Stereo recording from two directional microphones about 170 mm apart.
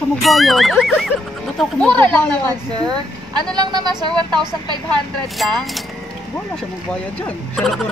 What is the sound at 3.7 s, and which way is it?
Speech, 25° right (ahead or behind).